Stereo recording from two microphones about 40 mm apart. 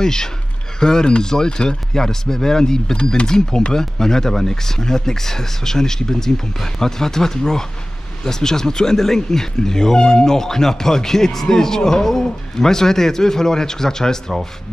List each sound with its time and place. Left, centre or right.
0.0 s speech: centre